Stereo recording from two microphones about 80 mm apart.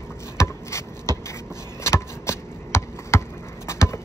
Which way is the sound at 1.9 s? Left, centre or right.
Left.